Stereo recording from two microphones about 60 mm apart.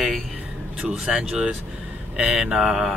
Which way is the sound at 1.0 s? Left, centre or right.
Centre.